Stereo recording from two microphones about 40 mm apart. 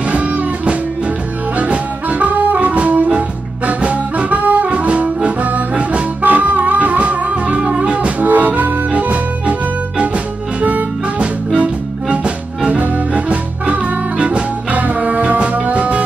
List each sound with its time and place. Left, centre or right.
0.1 s music: right
6.2 s music: right
8.3 s accordion: right
11.1 s music: right